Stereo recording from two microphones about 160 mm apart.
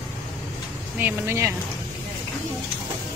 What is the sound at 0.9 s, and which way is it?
Speech, 15° right (ahead or behind).